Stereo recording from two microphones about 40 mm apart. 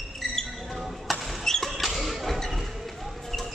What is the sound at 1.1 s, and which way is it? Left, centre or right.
Rodents, centre.